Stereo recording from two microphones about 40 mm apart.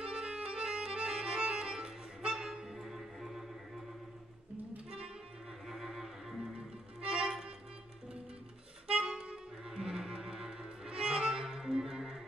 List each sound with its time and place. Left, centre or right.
0.0 s music: right; by 3.8 s centre
5.7 s music: centre
6.5 s music: right
8.8 s music: right